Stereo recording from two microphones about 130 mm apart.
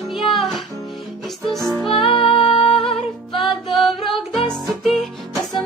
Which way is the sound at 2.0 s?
45° left (ahead or behind).